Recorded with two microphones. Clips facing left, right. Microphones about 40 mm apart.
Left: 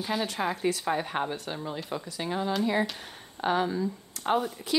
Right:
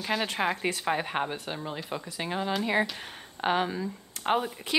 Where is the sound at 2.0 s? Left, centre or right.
Right.